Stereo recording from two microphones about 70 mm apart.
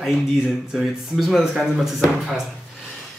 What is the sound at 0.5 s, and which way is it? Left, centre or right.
Speech, centre.